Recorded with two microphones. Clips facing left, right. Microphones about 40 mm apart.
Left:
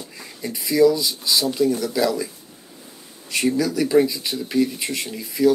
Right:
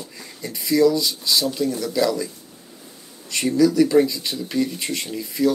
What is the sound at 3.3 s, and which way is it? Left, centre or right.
Speech, centre.